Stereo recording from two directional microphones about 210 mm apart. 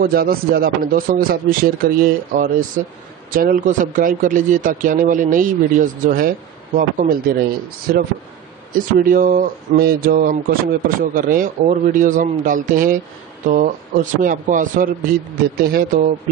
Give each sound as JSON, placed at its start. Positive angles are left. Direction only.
{"t": 0.0, "sound": "speech", "side_deg": -45}